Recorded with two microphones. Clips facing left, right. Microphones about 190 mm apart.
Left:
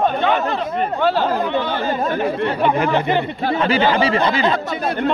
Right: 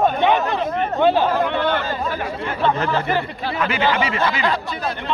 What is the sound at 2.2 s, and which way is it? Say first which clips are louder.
Speech: left 4 dB; 15° left (ahead or behind).